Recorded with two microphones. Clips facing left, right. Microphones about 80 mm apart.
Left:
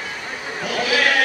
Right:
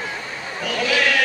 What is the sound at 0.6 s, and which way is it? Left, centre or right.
Sheep, centre.